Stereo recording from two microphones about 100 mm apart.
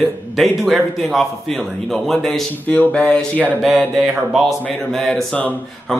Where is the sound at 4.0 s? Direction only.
Centre (ahead or behind).